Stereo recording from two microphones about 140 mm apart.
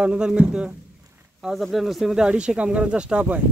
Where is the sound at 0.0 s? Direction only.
5° right (ahead or behind).